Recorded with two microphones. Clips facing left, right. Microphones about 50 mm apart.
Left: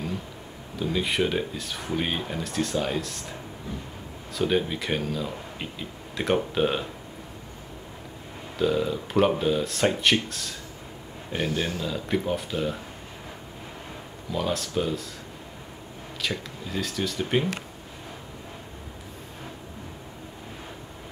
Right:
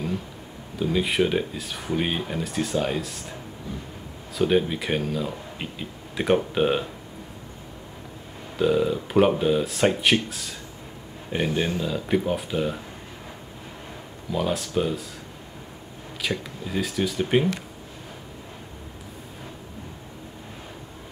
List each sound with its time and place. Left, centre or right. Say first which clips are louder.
0.7 s speech: right 3 dB; centre
4.4 s speech: right 3 dB; centre
8.5 s speech: right 3 dB; centre
11.3 s speech: right 3 dB; centre
11.9 s speech: right 3 dB; centre
14.3 s speech: right 2 dB; centre
16.2 s speech: right 2 dB; centre